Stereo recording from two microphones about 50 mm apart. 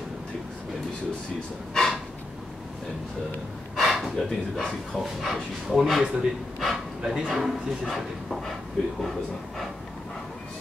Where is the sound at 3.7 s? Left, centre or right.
Centre.